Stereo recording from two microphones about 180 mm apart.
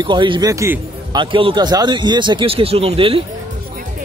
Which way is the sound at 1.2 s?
30° right (ahead or behind).